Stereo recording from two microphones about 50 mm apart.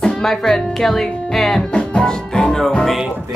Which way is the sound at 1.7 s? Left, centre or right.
Centre.